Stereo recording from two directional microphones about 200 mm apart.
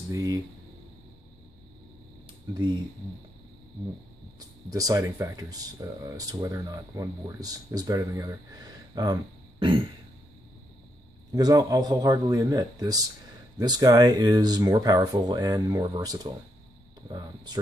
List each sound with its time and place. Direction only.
0.1 s speech: 15° right (ahead or behind)
2.5 s speech: 20° right (ahead or behind)
4.4 s speech: 20° right (ahead or behind)
11.3 s speech: 20° right (ahead or behind)